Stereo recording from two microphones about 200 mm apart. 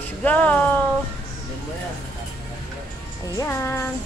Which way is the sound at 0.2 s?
5° left (ahead or behind).